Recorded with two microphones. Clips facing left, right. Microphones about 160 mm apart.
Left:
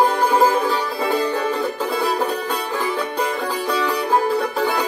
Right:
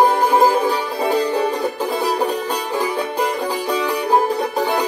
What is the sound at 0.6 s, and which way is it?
Music, 40° right (ahead or behind).